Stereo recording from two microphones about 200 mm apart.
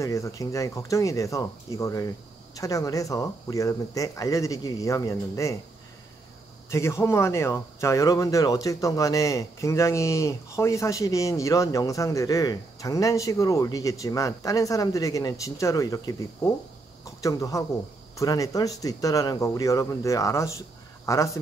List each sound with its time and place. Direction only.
0.0 s speech: 15° left (ahead or behind)
6.7 s speech: 15° left (ahead or behind)
17.2 s speech: 15° left (ahead or behind)